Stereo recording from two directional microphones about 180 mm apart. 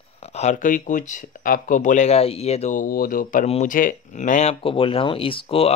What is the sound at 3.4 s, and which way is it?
Speech, 35° left (ahead or behind).